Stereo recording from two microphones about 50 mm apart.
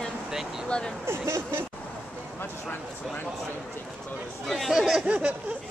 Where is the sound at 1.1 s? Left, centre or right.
Right.